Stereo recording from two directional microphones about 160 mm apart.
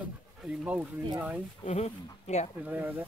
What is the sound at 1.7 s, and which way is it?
Speech, 45° left (ahead or behind).